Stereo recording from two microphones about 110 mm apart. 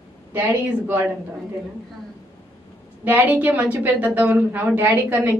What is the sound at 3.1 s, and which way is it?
A woman's voice, 15° right (ahead or behind).